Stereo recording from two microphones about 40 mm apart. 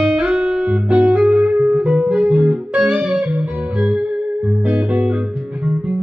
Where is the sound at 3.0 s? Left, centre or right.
Right.